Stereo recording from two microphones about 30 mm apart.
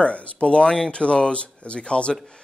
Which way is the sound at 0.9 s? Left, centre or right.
Left.